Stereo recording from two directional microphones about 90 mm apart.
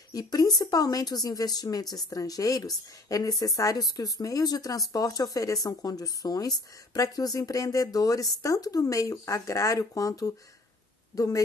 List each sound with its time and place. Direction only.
0.1 s speech: 45° left (ahead or behind)